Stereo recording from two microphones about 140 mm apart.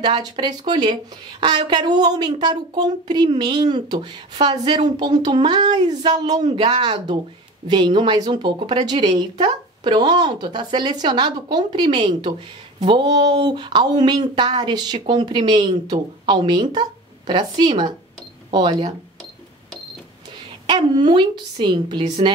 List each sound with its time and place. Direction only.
0.0 s speech: 35° right (ahead or behind)
20.6 s speech: 35° right (ahead or behind)